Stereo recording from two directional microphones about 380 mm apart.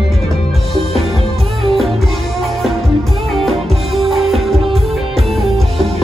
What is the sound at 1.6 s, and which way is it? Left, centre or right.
Music, centre.